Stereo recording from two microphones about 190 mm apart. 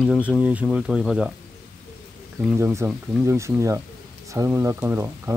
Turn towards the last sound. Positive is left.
turn(degrees=-10)  # may be behind; listen again after turning